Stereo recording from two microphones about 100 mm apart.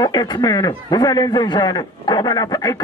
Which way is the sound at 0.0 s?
45° left (ahead or behind).